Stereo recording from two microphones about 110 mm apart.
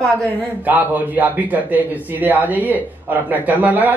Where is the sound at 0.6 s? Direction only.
15° right (ahead or behind).